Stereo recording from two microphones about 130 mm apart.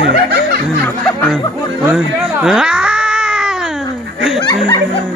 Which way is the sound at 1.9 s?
5° right (ahead or behind).